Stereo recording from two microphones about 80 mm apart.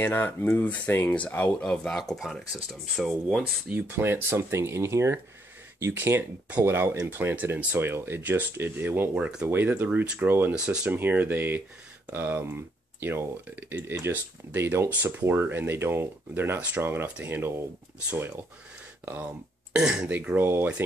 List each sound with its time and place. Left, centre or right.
0.0 s speech: left; by 3.4 s centre
3.6 s speech: right
9.1 s speech: centre
9.5 s speech: right
10.5 s speech: centre
11.0 s speech: right
19.8 s speech: centre
20.1 s speech: right